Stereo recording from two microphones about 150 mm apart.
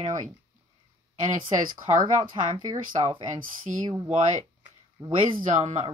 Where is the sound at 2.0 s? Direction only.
30° right (ahead or behind).